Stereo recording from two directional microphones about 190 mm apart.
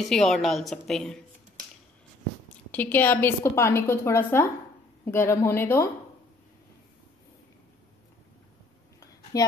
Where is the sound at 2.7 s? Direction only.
10° left (ahead or behind).